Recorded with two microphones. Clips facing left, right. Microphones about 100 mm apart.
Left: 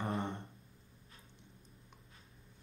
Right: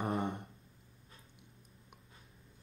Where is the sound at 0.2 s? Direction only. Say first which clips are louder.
Right 3 dB; 15° right (ahead or behind).